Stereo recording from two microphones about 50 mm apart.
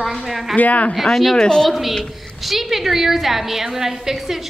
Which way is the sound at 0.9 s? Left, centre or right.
Centre.